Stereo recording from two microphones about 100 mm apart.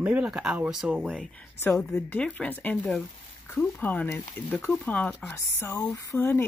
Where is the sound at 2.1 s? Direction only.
15° left (ahead or behind).